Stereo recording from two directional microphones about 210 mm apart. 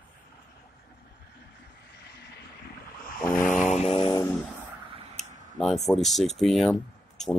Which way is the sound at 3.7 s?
25° left (ahead or behind).